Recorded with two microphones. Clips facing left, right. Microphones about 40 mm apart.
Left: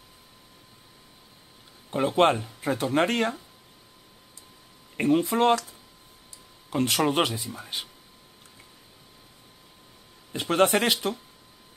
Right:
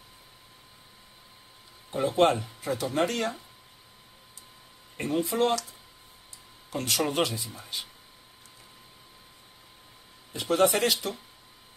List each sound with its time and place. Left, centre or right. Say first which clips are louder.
1.9 s speech: left 2 dB; left
5.2 s speech: left 4 dB; left
6.7 s speech: left 5 dB; left
10.3 s speech: left 2 dB; left